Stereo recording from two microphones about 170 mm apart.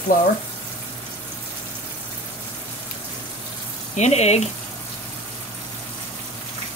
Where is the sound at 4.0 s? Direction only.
40° left (ahead or behind).